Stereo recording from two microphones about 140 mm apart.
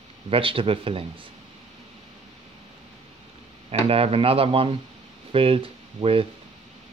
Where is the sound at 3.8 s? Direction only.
45° right (ahead or behind).